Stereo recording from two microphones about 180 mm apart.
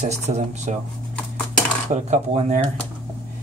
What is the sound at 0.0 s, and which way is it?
Speech, 40° right (ahead or behind).